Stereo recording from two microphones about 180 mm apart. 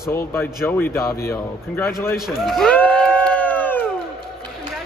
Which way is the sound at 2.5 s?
5° left (ahead or behind).